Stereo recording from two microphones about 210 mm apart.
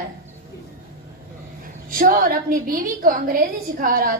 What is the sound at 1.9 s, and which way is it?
A woman's voice, 40° right (ahead or behind).